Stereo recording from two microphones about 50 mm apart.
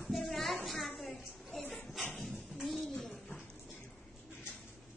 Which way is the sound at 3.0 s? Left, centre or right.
Centre.